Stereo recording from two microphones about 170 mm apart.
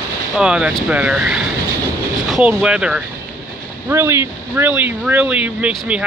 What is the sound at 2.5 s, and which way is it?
Speech, 5° right (ahead or behind).